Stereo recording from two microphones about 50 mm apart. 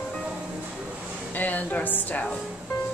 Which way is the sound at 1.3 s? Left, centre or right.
Left.